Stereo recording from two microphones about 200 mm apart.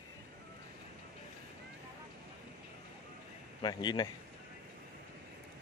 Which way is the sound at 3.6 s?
20° left (ahead or behind).